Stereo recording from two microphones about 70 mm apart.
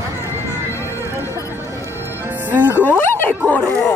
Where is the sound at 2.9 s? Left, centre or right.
Left.